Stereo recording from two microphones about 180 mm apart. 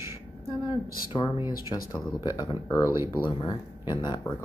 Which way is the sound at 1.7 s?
20° left (ahead or behind).